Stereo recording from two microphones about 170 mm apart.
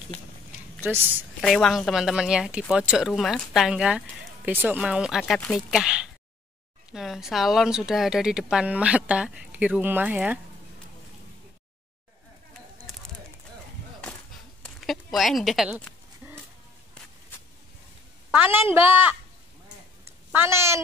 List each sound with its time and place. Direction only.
0.7 s a woman's voice: 10° right (ahead or behind)
1.4 s a woman's voice: centre (ahead or behind)
14.6 s a sound: centre (ahead or behind)
18.3 s a woman's voice: 10° right (ahead or behind)
20.2 s speech: 15° right (ahead or behind)